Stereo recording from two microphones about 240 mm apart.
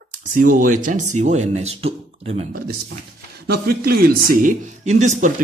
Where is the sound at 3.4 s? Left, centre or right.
Right.